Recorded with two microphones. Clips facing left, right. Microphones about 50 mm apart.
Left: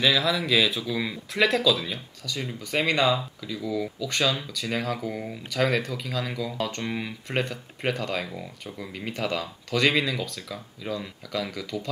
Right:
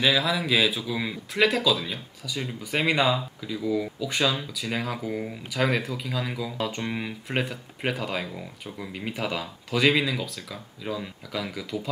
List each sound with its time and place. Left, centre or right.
0.0 s speech: centre